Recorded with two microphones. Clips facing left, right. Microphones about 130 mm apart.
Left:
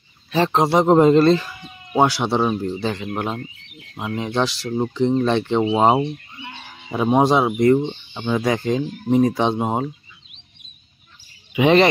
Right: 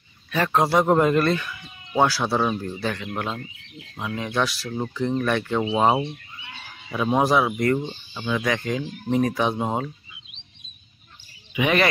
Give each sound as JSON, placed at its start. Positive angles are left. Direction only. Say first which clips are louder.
{"t": 0.3, "sound": "speech", "louder": "left 3 dB", "side_deg": 25}
{"t": 2.0, "sound": "speech", "louder": "left 3 dB", "side_deg": 20}
{"t": 11.5, "sound": "speech", "louder": "left 7 dB", "side_deg": 30}